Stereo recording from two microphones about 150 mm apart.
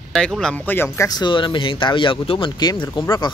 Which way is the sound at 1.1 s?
30° left (ahead or behind).